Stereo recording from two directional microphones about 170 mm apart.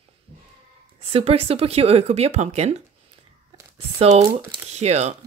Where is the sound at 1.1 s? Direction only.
35° right (ahead or behind).